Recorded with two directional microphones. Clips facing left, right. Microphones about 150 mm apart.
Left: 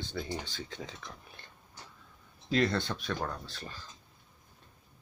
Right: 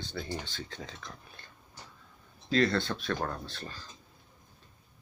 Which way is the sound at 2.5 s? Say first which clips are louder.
Right 2 dB; 15° left (ahead or behind).